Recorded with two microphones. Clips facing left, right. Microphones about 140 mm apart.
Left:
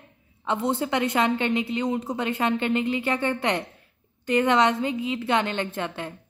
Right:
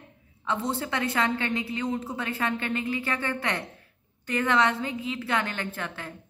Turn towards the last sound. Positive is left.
turn(degrees=20)  # may be behind; listen again after turning